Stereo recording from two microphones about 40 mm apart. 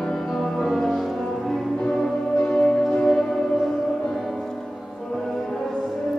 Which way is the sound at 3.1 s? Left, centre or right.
Centre.